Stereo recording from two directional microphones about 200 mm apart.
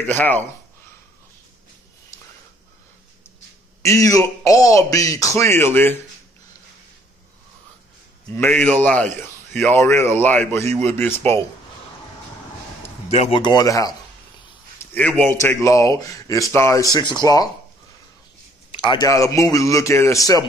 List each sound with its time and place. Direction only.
0.0 s a man's voice: 10° left (ahead or behind)
3.8 s a man's voice: 15° left (ahead or behind)
8.4 s a man's voice: 10° left (ahead or behind)
13.1 s speech: 30° left (ahead or behind)
14.8 s a man's voice: 5° left (ahead or behind)
18.7 s a man's voice: 25° left (ahead or behind)